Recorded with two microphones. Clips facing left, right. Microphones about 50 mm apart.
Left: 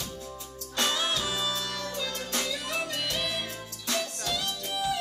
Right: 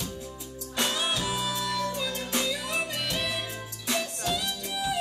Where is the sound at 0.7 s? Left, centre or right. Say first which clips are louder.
Even; right.